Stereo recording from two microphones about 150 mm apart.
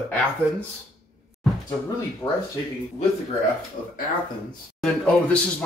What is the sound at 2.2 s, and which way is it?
Speech, 25° left (ahead or behind).